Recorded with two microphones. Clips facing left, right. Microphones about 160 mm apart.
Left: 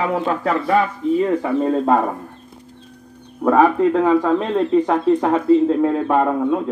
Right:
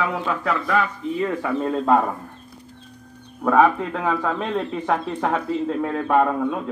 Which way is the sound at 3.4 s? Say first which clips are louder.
Left 4 dB; 30° left (ahead or behind).